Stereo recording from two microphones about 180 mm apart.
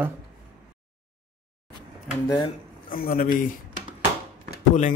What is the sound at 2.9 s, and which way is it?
Speech, 50° left (ahead or behind).